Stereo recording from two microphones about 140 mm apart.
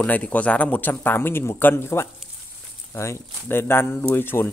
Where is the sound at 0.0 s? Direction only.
10° left (ahead or behind).